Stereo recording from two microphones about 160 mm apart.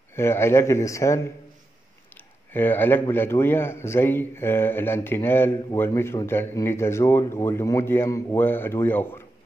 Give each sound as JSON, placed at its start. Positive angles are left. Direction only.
{"t": 0.1, "sound": "a man's voice", "side_deg": 15}
{"t": 2.5, "sound": "a man's voice", "side_deg": 10}